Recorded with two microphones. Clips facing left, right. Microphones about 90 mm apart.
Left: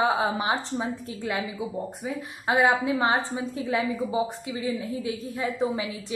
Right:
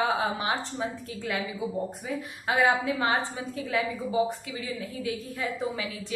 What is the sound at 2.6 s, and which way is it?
A woman's voice, 25° left (ahead or behind).